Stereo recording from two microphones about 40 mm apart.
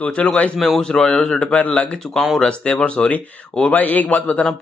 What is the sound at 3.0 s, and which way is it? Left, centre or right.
A man's voice, left.